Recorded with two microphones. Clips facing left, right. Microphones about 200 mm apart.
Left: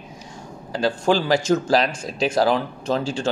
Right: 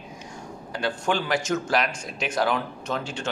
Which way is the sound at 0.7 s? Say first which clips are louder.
Left 6 dB; 35° left (ahead or behind).